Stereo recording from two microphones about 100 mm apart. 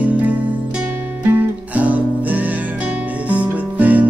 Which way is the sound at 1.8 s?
15° right (ahead or behind).